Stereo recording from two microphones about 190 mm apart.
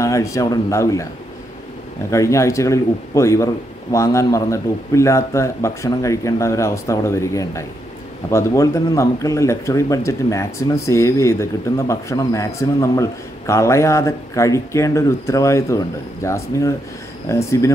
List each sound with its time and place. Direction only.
0.0 s speech: 15° left (ahead or behind)
2.0 s speech: 15° left (ahead or behind)